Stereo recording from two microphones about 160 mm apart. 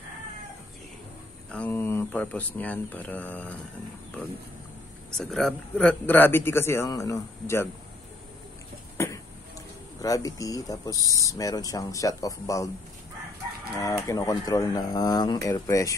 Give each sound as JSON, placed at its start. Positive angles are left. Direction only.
{"t": 1.5, "sound": "a man's voice", "side_deg": 10}
{"t": 5.1, "sound": "a man's voice", "side_deg": 5}
{"t": 8.9, "sound": "cough", "side_deg": 15}
{"t": 10.0, "sound": "speech", "side_deg": 20}
{"t": 13.7, "sound": "speech", "side_deg": 20}